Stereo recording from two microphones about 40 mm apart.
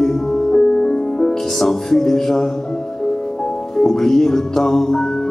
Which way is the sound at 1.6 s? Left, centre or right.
Centre.